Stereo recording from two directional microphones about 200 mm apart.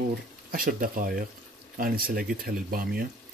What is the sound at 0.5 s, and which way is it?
Speech, 45° right (ahead or behind).